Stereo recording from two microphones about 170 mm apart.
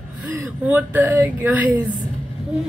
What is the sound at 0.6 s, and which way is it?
Speech, 10° right (ahead or behind).